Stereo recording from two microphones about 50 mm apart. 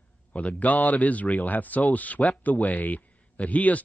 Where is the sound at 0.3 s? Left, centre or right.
Left.